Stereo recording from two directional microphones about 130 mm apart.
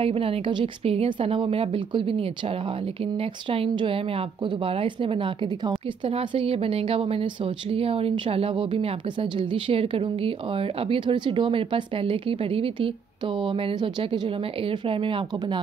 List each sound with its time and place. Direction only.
0.0 s a woman's voice: 45° right (ahead or behind)